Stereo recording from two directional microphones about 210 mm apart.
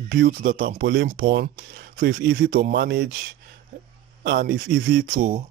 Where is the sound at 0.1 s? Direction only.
45° right (ahead or behind).